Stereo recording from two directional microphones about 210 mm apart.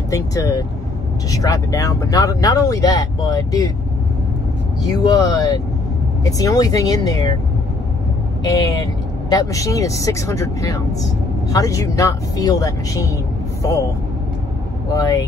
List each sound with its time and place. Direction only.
0.1 s speech: 15° left (ahead or behind)
4.8 s speech: 15° left (ahead or behind)
8.5 s speech: 20° left (ahead or behind)
14.9 s speech: 15° left (ahead or behind)